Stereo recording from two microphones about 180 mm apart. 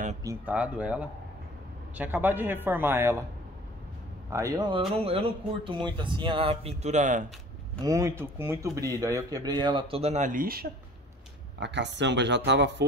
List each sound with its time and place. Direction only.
0.2 s speech: 15° right (ahead or behind)
4.3 s speech: 15° right (ahead or behind); by 7.2 s 45° right (ahead or behind)
7.8 s speech: 15° right (ahead or behind); by 10.7 s 55° right (ahead or behind)
11.6 s speech: 75° right (ahead or behind)